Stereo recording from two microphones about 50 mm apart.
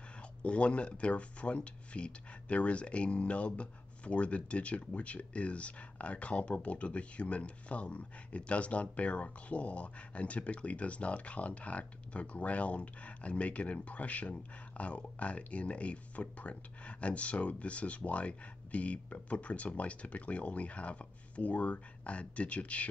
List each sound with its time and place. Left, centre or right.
0.4 s speech: left